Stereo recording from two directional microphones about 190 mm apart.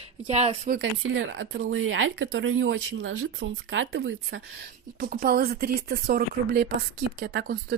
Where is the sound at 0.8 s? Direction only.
80° right.